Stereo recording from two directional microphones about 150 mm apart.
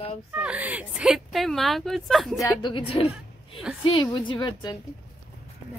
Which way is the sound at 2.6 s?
35° left (ahead or behind).